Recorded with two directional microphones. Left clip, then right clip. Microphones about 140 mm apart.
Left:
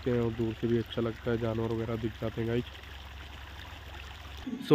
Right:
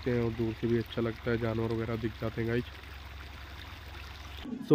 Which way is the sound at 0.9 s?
Centre (ahead or behind).